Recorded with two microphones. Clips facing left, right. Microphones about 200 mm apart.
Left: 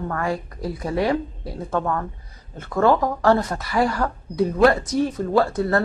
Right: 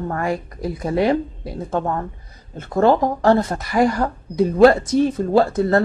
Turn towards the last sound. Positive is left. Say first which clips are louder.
# right 3 dB
turn(degrees=-25)  # may be behind; listen again after turning